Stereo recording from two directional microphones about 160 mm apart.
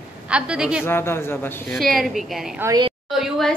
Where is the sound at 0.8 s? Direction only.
15° left (ahead or behind).